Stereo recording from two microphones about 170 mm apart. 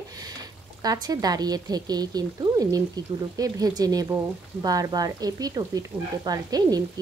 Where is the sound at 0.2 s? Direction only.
25° right (ahead or behind).